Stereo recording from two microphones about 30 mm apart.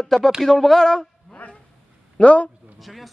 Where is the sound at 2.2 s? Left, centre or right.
Left.